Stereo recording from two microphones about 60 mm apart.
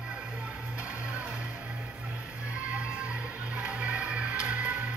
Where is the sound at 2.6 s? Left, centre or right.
Centre.